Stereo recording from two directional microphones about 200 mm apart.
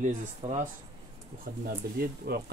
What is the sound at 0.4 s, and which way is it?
Speech, 35° right (ahead or behind).